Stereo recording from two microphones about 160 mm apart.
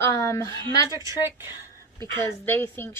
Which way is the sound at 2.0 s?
15° left (ahead or behind).